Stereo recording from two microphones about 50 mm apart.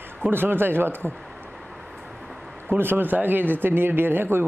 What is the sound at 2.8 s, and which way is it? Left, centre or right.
Speech, right.